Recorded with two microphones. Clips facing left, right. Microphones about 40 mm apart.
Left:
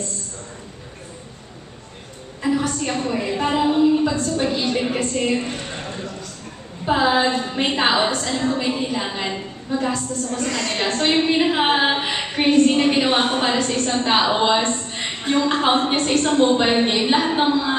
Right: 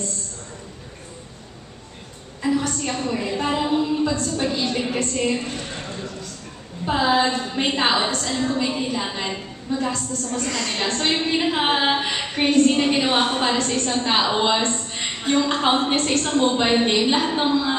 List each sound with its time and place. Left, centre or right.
2.4 s a woman's voice: centre
5.4 s a sound: centre
6.9 s a woman's voice: centre